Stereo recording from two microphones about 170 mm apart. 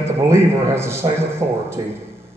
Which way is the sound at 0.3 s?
15° right (ahead or behind).